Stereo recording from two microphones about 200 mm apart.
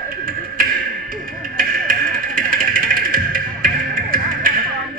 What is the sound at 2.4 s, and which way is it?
Music, 45° right (ahead or behind).